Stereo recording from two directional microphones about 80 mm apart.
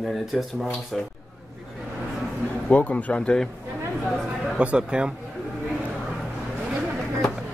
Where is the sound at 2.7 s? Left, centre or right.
Centre.